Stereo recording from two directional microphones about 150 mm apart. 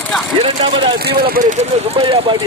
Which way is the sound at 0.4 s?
35° right (ahead or behind).